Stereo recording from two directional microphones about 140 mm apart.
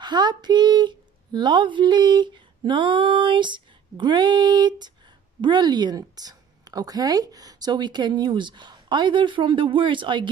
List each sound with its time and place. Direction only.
0.0 s a woman's voice: 30° right (ahead or behind)